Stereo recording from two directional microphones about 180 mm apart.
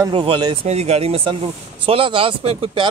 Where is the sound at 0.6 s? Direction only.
35° right (ahead or behind).